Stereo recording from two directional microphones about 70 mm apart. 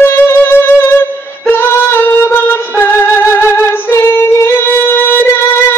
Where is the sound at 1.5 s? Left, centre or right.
Left.